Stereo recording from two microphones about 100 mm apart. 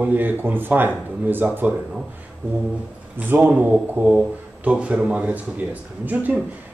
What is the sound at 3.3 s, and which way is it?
Speech, 20° right (ahead or behind).